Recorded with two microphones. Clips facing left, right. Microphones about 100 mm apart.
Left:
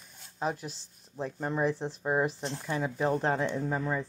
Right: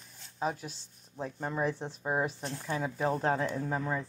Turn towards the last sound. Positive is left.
turn(degrees=0)  # may be behind; listen again after turning